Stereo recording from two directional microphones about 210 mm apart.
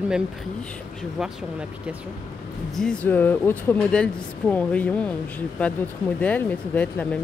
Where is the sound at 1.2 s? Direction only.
5° right (ahead or behind).